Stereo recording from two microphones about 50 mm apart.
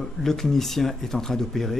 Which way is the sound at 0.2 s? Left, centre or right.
Centre.